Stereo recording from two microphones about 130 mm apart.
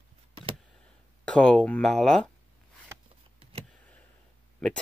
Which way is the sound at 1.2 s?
5° left (ahead or behind).